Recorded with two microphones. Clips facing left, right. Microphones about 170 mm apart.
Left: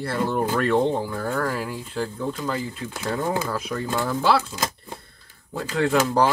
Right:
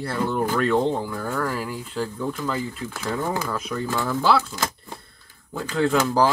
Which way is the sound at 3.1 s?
15° left (ahead or behind).